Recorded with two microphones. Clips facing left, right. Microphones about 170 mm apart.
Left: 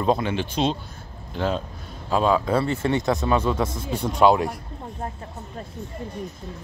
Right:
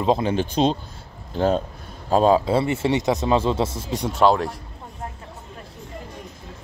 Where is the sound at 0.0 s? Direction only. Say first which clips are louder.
Right 2 dB; 25° right (ahead or behind).